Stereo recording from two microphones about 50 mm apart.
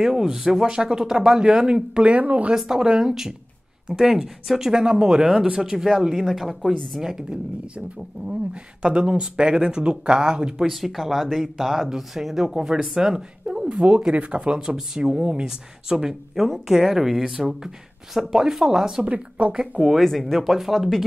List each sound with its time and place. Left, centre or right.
0.0 s speech: centre
2.0 s speech: right
2.5 s speech: centre
7.0 s speech: centre
8.8 s speech: right
10.7 s speech: centre
19.0 s speech: right
19.9 s speech: centre